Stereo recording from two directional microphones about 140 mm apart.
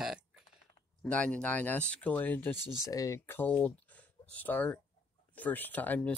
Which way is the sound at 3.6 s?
10° left (ahead or behind).